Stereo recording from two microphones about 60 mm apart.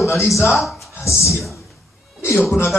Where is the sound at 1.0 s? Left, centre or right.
Left.